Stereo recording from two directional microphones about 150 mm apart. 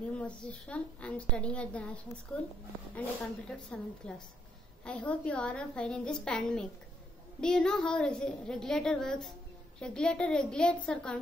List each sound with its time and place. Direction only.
0.2 s a woman's voice: 10° left (ahead or behind)